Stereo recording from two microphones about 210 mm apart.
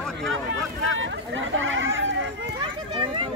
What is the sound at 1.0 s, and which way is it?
Chatter, 65° right (ahead or behind).